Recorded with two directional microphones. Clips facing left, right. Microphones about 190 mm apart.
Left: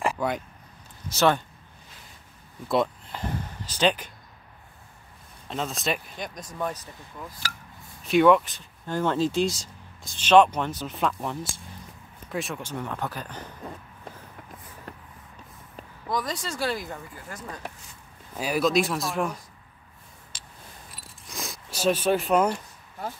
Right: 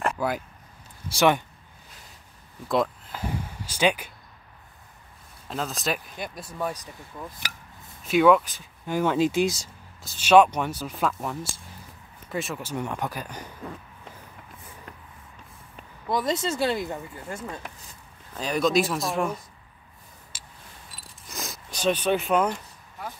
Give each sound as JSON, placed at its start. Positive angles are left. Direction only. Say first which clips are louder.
{"t": 0.0, "sound": "a sound", "louder": "even", "side_deg": 0}
{"t": 1.0, "sound": "speech", "louder": "right 1 dB", "side_deg": -15}
{"t": 2.7, "sound": "speech", "louder": "even", "side_deg": 0}
{"t": 5.5, "sound": "speech", "louder": "even", "side_deg": 0}
{"t": 8.0, "sound": "speech", "louder": "even", "side_deg": 0}
{"t": 16.1, "sound": "speech", "louder": "right 4 dB", "side_deg": -25}
{"t": 18.3, "sound": "speech", "louder": "even", "side_deg": 5}
{"t": 20.3, "sound": "camera", "louder": "even", "side_deg": -5}
{"t": 21.3, "sound": "zipper", "louder": "even", "side_deg": 0}